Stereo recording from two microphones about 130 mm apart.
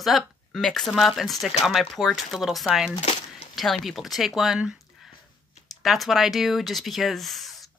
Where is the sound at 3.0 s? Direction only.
55° left (ahead or behind).